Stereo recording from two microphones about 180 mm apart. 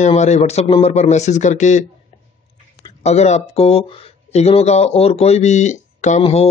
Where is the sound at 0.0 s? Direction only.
40° left (ahead or behind).